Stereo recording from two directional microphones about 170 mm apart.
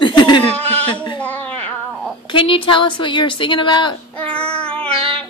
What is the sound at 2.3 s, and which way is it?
A woman's voice, 30° left (ahead or behind).